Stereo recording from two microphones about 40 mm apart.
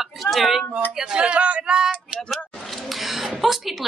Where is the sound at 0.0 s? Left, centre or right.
Centre.